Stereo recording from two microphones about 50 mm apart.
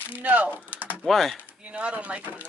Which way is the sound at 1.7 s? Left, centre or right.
Right.